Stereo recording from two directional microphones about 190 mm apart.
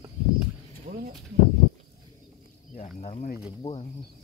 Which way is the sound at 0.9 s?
40° right (ahead or behind).